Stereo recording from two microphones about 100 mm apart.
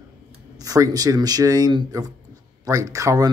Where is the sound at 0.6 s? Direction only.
40° right (ahead or behind).